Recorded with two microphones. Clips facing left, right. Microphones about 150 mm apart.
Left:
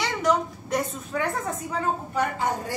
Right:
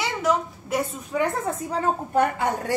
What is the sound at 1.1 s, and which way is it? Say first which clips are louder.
Speech: right 4 dB; 15° right (ahead or behind).